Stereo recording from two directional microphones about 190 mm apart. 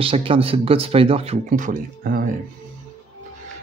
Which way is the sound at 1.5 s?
45° right (ahead or behind).